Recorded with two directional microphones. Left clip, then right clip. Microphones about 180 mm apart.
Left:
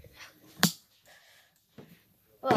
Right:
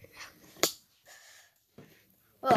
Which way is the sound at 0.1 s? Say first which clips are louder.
Right 3 dB; 30° right (ahead or behind).